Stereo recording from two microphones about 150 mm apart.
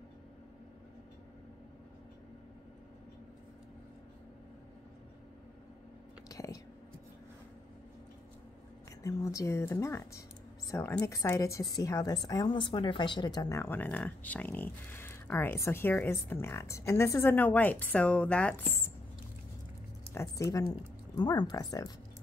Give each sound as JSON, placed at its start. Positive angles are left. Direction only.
{"t": 6.2, "sound": "whispering", "side_deg": 25}
{"t": 9.0, "sound": "a woman's voice", "side_deg": 20}
{"t": 20.2, "sound": "a woman's voice", "side_deg": 15}
{"t": 21.2, "sound": "a woman's voice", "side_deg": 25}